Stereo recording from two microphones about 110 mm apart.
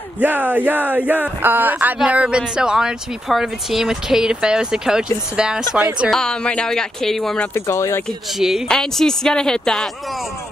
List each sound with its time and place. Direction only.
0.2 s speech: 15° right (ahead or behind); by 7.4 s 5° left (ahead or behind)
7.5 s speech: 25° left (ahead or behind)
8.4 s speech: 5° right (ahead or behind)